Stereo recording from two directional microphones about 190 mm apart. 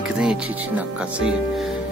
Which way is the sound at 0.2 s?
5° right (ahead or behind).